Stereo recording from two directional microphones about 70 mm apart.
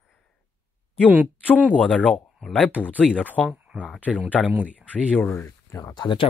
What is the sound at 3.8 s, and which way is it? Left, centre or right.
Speech, centre.